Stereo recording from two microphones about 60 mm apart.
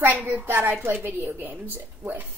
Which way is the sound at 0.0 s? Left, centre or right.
Right.